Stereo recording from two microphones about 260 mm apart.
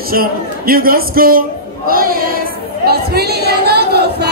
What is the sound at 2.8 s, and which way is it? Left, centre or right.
Chatter, right.